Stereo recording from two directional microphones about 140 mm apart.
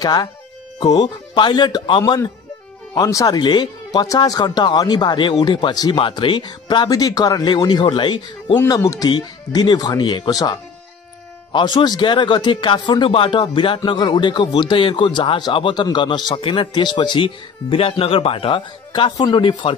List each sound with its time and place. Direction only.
0.0 s speech: 30° left (ahead or behind)
8.6 s speech: 25° left (ahead or behind)